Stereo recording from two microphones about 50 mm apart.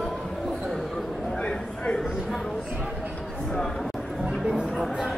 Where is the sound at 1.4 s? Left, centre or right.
Centre.